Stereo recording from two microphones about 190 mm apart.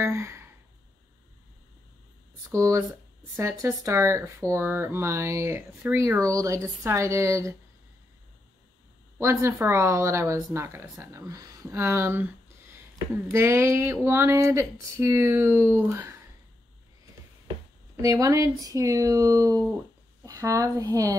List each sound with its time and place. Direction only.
0.0 s sigh: 15° right (ahead or behind)
2.5 s speech: 15° right (ahead or behind)
9.2 s speech: 15° right (ahead or behind)
18.0 s speech: 15° right (ahead or behind)